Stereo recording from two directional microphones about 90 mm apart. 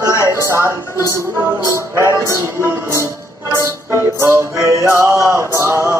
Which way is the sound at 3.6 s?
30° right (ahead or behind).